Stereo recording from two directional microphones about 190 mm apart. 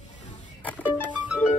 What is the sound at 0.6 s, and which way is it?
Music, 5° left (ahead or behind).